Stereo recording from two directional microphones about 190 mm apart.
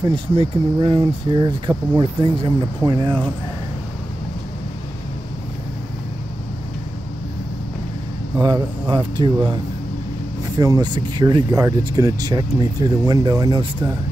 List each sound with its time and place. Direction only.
0.0 s speech: 25° right (ahead or behind)
8.4 s speech: 20° right (ahead or behind)
10.6 s speech: 20° right (ahead or behind)